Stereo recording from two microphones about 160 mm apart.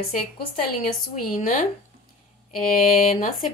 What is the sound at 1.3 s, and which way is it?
Speech, 60° left (ahead or behind).